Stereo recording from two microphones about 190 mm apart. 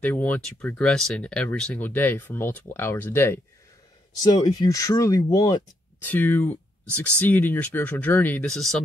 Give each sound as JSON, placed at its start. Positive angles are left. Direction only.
{"t": 0.0, "sound": "speech", "side_deg": 10}